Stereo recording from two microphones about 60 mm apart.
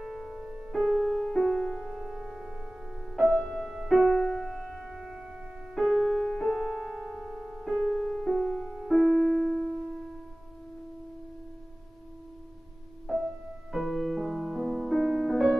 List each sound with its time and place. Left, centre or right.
0.0 s music: centre
0.3 s music: centre
0.7 s music: centre
1.9 s music: centre
3.3 s music: centre
3.6 s music: centre
6.3 s music: centre
7.0 s piano: centre
7.9 s music: centre
13.0 s music: centre